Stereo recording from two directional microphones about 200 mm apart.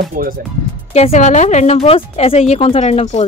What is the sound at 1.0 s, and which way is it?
A woman's voice, 35° left (ahead or behind).